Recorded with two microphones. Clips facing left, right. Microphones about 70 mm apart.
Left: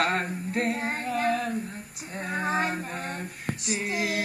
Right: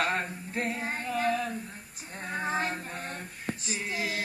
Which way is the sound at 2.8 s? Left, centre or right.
Left.